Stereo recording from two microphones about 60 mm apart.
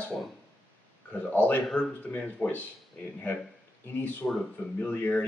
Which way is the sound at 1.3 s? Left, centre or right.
Left.